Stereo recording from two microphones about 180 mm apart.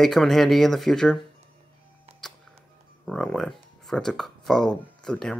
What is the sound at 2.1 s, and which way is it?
Music, 35° right (ahead or behind).